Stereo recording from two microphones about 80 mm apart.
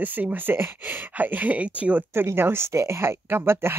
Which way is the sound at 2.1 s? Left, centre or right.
Right.